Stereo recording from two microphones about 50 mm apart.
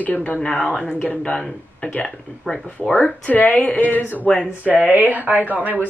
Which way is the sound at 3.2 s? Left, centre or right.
Left.